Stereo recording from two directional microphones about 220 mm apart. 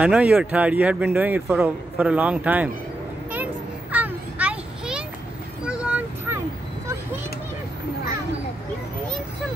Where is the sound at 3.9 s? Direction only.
5° right (ahead or behind).